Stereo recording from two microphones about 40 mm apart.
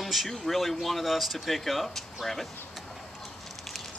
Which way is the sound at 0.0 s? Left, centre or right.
Centre.